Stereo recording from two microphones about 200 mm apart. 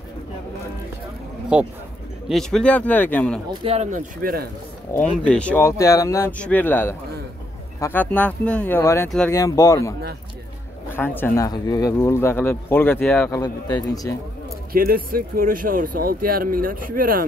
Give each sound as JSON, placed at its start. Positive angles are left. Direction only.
{"t": 1.5, "sound": "speech", "side_deg": -5}
{"t": 3.6, "sound": "speech", "side_deg": -35}
{"t": 5.1, "sound": "speech", "side_deg": 5}
{"t": 13.3, "sound": "a man's voice", "side_deg": 20}
{"t": 14.7, "sound": "speech", "side_deg": -45}